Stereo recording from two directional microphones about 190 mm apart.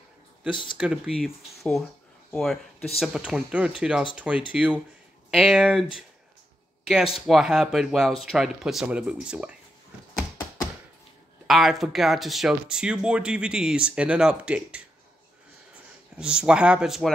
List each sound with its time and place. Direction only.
0.5 s speech: 25° left (ahead or behind)
0.7 s speech: 5° right (ahead or behind)
7.2 s speech: centre (ahead or behind)
11.4 s speech: centre (ahead or behind)
16.2 s speech: 5° right (ahead or behind)